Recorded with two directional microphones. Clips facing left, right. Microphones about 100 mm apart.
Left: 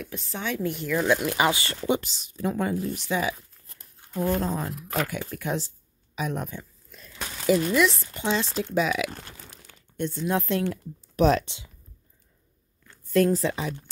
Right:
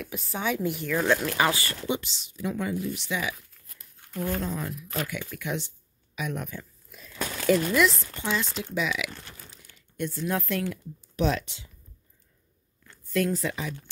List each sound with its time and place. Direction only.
0.0 s a woman's voice: 5° right (ahead or behind)
1.0 s speech: 15° left (ahead or behind)
1.9 s speech: 50° left (ahead or behind)
4.7 s speech: 70° left (ahead or behind)
5.0 s speech: 40° left (ahead or behind)
6.9 s crumpling: 5° right (ahead or behind)
7.4 s a woman's voice: centre (ahead or behind)
8.2 s speech: 25° left (ahead or behind)
8.7 s speech: 40° left (ahead or behind)
9.6 s speech: 30° left (ahead or behind)
11.1 s speech: 45° left (ahead or behind)
11.4 s speech: 20° left (ahead or behind)
13.1 s speech: 35° left (ahead or behind)